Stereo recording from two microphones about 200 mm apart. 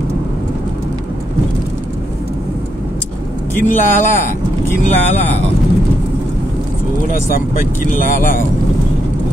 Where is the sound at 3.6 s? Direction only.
40° left (ahead or behind).